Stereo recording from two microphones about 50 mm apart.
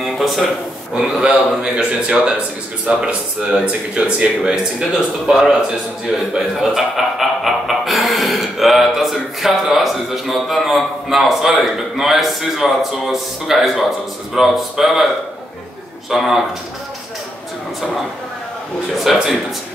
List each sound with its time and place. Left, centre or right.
0.0 s a sound: centre
1.2 s a man's voice: centre
5.2 s speech: centre
16.1 s speech: centre
19.1 s speech: centre